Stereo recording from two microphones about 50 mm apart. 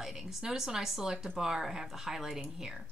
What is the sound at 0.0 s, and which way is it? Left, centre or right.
Speech, centre.